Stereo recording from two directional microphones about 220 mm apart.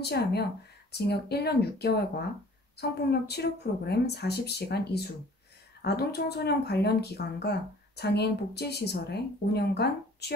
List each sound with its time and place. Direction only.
0.0 s speech: 50° left (ahead or behind)